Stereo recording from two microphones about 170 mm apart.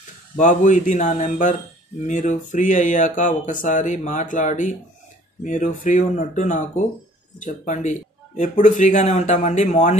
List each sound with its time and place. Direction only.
0.4 s speech: 45° left (ahead or behind)